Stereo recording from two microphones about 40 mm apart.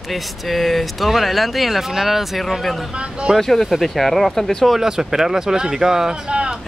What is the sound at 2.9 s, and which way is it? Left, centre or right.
Speech, right.